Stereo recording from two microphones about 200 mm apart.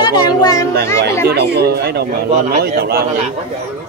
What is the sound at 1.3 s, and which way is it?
Speech, 55° right (ahead or behind).